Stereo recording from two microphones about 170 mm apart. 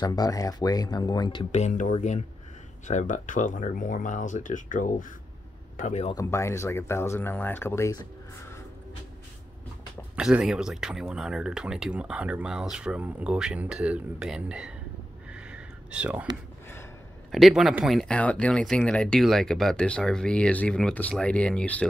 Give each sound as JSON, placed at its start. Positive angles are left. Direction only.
{"t": 0.0, "sound": "speech", "side_deg": 25}
{"t": 1.5, "sound": "speech", "side_deg": 45}
{"t": 6.1, "sound": "speech", "side_deg": 15}
{"t": 10.1, "sound": "speech", "side_deg": -5}
{"t": 15.3, "sound": "a sound", "side_deg": -5}
{"t": 17.3, "sound": "speech", "side_deg": 0}